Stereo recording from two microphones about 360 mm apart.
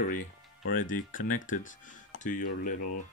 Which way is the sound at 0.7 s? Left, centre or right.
Left.